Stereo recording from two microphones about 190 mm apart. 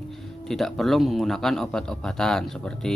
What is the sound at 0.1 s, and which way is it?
Speech, centre (ahead or behind).